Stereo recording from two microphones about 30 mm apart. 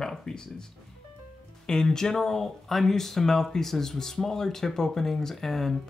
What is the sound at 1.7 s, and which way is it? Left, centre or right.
Speech, centre.